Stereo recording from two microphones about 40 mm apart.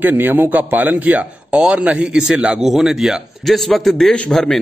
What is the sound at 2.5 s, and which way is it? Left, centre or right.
Speech, centre.